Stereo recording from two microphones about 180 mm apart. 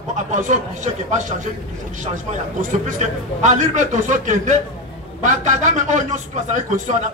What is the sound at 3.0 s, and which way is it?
A man's voice, 40° right (ahead or behind).